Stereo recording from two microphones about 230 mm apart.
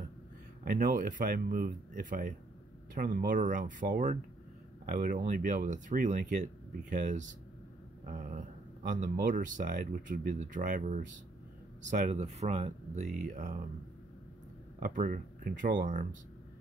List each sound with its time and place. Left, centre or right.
0.7 s speech: right
14.8 s speech: right